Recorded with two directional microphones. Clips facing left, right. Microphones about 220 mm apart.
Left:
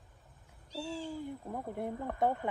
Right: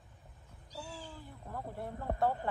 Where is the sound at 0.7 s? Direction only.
25° left (ahead or behind).